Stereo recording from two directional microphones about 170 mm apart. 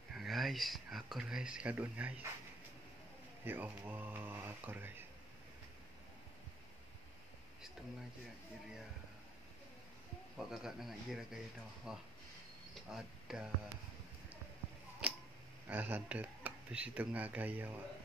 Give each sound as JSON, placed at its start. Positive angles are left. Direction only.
{"t": 0.1, "sound": "speech", "side_deg": 0}
{"t": 3.4, "sound": "speech", "side_deg": -10}
{"t": 10.3, "sound": "a man's voice", "side_deg": -5}
{"t": 15.0, "sound": "tick-tock", "side_deg": -5}
{"t": 15.7, "sound": "speech", "side_deg": -10}